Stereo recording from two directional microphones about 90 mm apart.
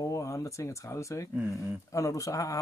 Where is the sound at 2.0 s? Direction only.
35° left (ahead or behind).